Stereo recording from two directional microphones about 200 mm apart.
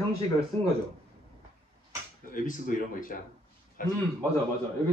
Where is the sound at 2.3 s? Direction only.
40° left (ahead or behind).